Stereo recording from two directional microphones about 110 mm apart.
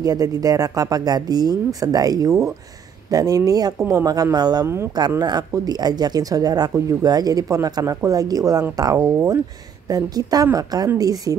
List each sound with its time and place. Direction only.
0.0 s speech: 35° right (ahead or behind)